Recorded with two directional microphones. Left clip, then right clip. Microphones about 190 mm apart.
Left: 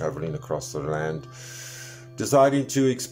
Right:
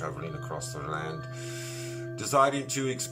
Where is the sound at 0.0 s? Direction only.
35° left (ahead or behind).